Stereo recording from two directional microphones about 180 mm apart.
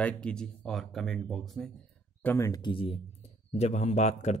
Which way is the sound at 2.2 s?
15° left (ahead or behind).